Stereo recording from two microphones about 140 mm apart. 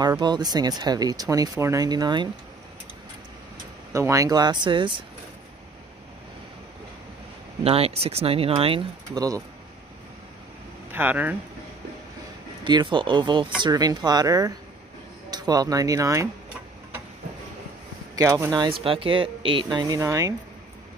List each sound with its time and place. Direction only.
0.2 s speech: 30° right (ahead or behind)
3.9 s speech: 20° right (ahead or behind)
7.6 s speech: 45° right (ahead or behind)
9.1 s speech: 25° right (ahead or behind)
10.9 s speech: 15° right (ahead or behind)
12.6 s speech: 35° right (ahead or behind)
18.1 s speech: 25° right (ahead or behind)